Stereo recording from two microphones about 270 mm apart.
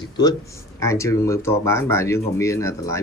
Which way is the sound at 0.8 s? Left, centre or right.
Centre.